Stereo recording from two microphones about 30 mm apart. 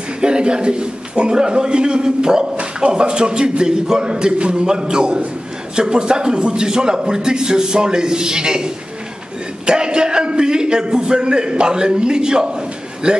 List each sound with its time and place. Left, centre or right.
0.2 s a man's voice: right
2.5 s bow-wow: right
2.9 s a man's voice: right
4.1 s a man's voice: right